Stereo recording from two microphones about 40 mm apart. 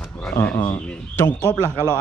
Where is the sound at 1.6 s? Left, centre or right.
Left.